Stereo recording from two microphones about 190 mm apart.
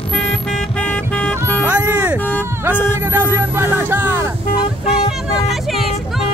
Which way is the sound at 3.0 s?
10° right (ahead or behind).